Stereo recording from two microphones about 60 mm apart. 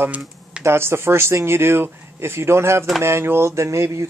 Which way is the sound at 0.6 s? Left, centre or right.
Right.